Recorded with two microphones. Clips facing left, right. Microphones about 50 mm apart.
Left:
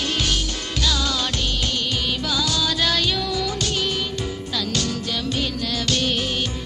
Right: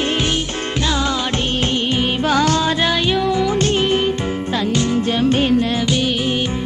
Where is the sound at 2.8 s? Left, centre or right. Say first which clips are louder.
Right 5 dB; right.